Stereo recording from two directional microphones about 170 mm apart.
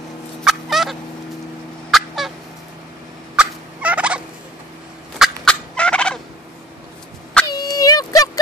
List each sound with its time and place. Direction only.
0.4 s turkey: centre (ahead or behind)
1.9 s fowl: centre (ahead or behind)
3.3 s gobble: 5° right (ahead or behind)
5.2 s gobble: 5° left (ahead or behind)
7.4 s a sound: 25° left (ahead or behind)